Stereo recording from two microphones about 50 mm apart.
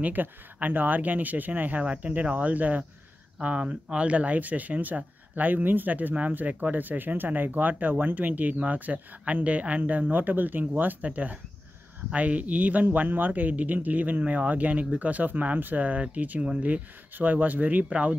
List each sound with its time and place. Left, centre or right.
0.0 s speech: right
17.8 s speech: right